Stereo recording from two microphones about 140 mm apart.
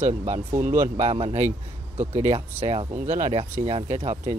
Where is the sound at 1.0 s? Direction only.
45° right (ahead or behind).